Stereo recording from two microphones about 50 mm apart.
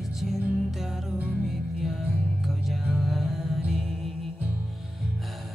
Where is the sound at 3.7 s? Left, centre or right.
Centre.